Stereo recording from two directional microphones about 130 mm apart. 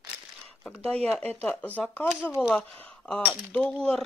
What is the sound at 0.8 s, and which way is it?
Speech, 50° right (ahead or behind).